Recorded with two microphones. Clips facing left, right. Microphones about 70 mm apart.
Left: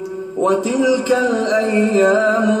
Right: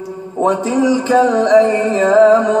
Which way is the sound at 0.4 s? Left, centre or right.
Right.